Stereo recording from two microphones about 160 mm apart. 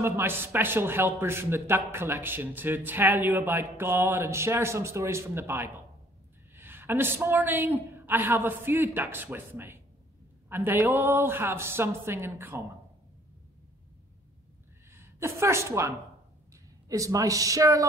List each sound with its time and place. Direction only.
0.0 s speech: 15° right (ahead or behind)
14.9 s a woman's voice: 15° right (ahead or behind)
16.9 s speech: 20° right (ahead or behind)